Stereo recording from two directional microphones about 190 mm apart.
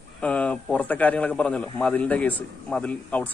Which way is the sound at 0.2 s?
5° left (ahead or behind).